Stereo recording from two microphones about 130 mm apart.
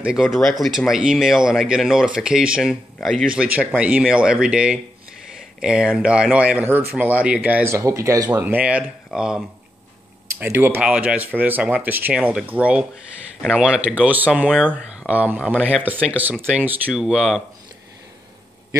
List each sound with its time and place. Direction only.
0.0 s speech: 5° right (ahead or behind)
7.7 s speech: 25° right (ahead or behind)
8.3 s speech: 15° right (ahead or behind)
10.4 s speech: 15° right (ahead or behind)